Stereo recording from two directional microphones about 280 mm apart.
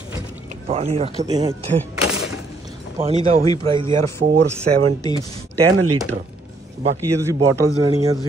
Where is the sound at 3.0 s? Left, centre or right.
Right.